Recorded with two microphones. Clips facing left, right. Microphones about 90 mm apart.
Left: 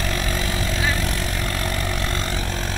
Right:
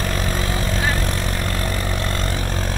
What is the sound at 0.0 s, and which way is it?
Vehicle, 35° right (ahead or behind).